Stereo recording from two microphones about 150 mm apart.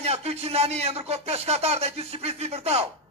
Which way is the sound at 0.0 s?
45° right (ahead or behind).